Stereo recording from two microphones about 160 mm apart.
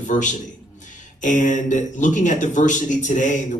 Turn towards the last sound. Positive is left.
turn(degrees=50)  # may be behind; listen again after turning